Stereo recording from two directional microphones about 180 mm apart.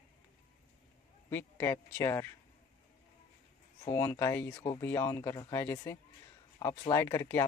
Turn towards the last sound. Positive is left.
turn(degrees=15)  # may be behind; listen again after turning